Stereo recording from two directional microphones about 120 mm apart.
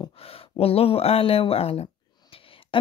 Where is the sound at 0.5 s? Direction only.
55° left (ahead or behind).